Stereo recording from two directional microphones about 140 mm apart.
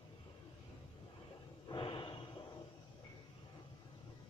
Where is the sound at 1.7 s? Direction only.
35° left (ahead or behind).